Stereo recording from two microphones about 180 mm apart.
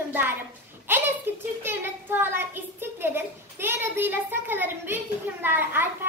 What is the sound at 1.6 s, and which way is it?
A child's voice, 10° right (ahead or behind).